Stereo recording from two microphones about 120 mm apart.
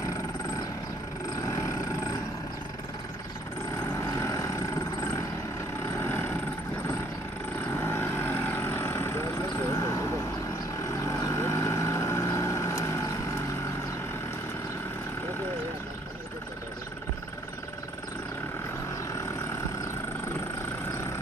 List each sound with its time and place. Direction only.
4.0 s vehicle: 25° left (ahead or behind)
5.9 s vehicle: 20° left (ahead or behind)
7.7 s vehicle: 20° left (ahead or behind)